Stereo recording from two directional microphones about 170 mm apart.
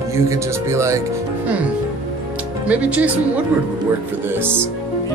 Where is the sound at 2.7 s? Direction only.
10° right (ahead or behind).